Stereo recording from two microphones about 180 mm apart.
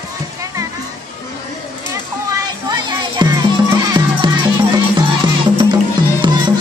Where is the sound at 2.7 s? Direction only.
25° right (ahead or behind).